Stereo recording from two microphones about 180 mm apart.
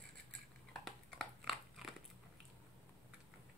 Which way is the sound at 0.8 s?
Centre (ahead or behind).